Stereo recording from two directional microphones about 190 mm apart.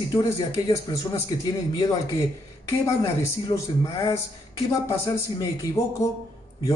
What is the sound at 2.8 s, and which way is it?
Speech, 20° left (ahead or behind).